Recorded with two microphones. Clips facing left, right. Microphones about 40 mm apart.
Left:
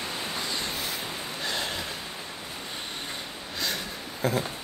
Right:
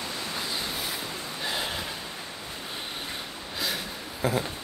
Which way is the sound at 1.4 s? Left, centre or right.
Centre.